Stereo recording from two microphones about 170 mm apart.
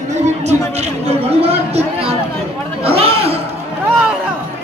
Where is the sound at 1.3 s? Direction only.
35° right (ahead or behind).